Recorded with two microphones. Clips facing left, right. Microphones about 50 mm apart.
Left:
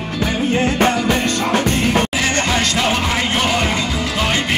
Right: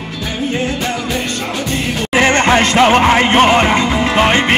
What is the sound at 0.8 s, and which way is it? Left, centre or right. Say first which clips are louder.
Music: left 3 dB; left.